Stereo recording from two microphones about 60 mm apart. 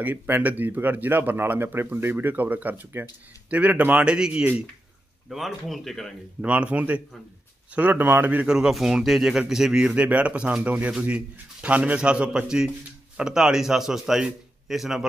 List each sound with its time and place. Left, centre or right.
0.0 s speech: right
3.4 s speech: right
5.3 s speech: centre
6.4 s speech: right
8.5 s speech: centre